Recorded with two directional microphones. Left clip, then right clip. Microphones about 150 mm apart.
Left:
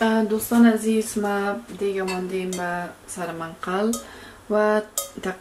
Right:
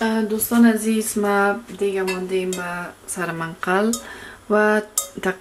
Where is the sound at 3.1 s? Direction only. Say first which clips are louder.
Right 5 dB; 35° right (ahead or behind).